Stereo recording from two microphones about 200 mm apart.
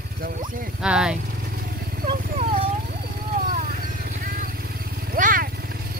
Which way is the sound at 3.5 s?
40° right (ahead or behind).